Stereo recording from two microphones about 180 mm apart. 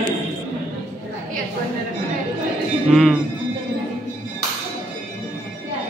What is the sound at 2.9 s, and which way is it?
Speech, centre (ahead or behind).